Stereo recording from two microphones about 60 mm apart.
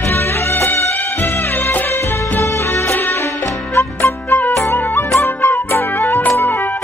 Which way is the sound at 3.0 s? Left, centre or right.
Left.